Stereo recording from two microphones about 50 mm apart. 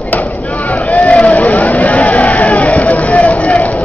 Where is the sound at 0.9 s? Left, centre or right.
Left.